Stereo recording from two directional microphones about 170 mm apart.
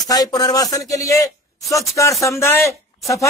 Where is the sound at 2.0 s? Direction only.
20° left (ahead or behind).